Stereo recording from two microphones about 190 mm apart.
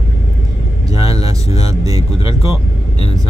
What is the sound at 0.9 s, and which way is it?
Speech, 20° right (ahead or behind).